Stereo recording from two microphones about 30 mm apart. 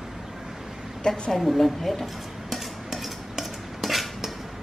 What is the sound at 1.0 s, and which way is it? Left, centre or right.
Speech, left.